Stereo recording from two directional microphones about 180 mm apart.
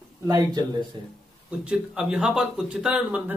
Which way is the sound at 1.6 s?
5° right (ahead or behind).